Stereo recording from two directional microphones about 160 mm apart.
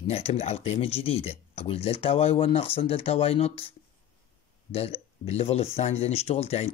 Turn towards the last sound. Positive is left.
turn(degrees=40)  # may be behind; listen again after turning